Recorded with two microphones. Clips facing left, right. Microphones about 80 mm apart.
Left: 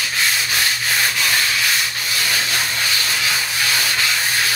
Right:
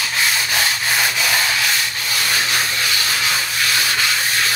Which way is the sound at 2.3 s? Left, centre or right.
Centre.